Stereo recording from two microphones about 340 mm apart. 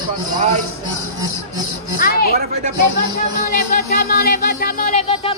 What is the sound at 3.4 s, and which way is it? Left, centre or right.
Music, left.